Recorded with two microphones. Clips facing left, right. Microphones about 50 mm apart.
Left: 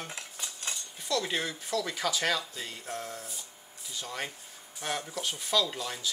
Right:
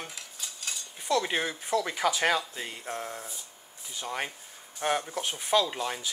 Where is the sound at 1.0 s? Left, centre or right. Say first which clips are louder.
Right 4 dB; right.